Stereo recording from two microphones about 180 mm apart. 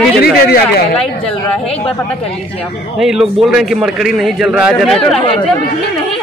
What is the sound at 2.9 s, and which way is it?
A man's voice, centre (ahead or behind).